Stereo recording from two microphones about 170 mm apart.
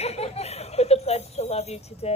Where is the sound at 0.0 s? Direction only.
40° left (ahead or behind).